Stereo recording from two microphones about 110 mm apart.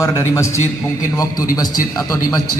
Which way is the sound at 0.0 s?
25° left (ahead or behind).